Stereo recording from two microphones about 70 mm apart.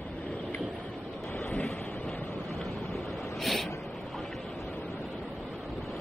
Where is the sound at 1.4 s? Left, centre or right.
Centre.